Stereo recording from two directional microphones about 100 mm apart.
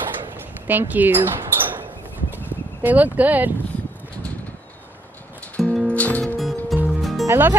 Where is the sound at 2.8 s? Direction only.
15° right (ahead or behind).